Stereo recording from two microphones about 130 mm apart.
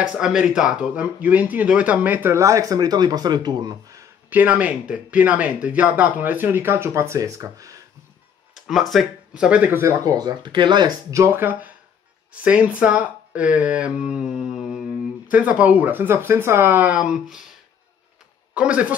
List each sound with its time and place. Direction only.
0.2 s speech: 5° right (ahead or behind); by 4.0 s 30° right (ahead or behind)
4.3 s speech: 15° right (ahead or behind)
8.5 s speech: centre (ahead or behind)
18.5 s speech: 10° right (ahead or behind)